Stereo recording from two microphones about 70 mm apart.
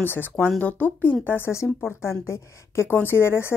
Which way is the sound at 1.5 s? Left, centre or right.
Left.